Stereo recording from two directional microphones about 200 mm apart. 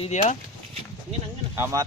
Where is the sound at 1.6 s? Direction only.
15° right (ahead or behind).